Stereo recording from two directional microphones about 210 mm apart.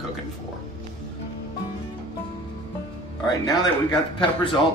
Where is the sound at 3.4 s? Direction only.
20° left (ahead or behind).